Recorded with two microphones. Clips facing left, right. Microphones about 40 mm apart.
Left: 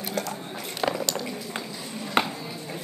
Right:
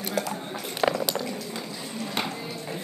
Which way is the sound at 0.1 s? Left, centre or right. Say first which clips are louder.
Right 2 dB; centre.